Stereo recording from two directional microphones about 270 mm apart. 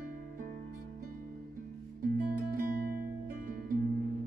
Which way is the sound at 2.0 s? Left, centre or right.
Right.